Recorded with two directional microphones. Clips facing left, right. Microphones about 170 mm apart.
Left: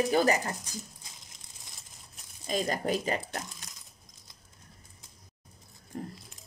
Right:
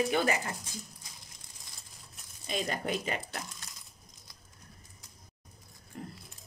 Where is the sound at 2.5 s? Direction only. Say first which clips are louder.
Left 4 dB; 40° left (ahead or behind).